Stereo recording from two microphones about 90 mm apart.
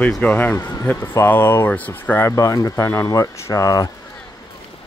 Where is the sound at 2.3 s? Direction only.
40° left (ahead or behind).